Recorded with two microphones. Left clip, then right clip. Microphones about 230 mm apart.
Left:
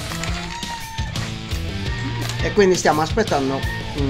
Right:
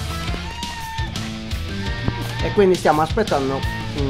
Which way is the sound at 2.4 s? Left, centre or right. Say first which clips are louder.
Even; centre.